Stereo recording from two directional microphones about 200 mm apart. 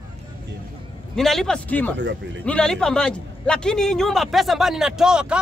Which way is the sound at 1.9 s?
60° right (ahead or behind).